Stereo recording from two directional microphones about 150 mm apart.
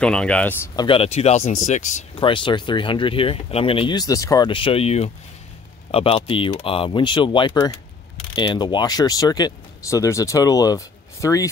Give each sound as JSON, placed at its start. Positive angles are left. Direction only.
{"t": 0.0, "sound": "speech", "side_deg": 5}
{"t": 0.7, "sound": "speech", "side_deg": 35}
{"t": 2.1, "sound": "speech", "side_deg": 35}